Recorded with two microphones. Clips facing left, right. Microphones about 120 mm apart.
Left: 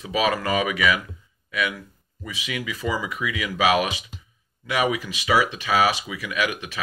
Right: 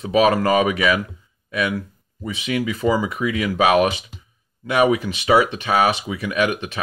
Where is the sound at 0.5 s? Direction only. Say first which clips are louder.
Right 5 dB; 40° right (ahead or behind).